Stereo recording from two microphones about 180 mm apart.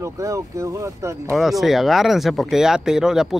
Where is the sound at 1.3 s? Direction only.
Centre (ahead or behind).